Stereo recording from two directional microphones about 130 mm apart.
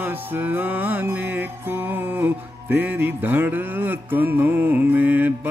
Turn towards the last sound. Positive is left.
turn(degrees=-15)  # may be behind; listen again after turning